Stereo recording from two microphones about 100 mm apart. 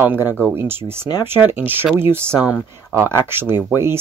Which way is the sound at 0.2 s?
20° right (ahead or behind).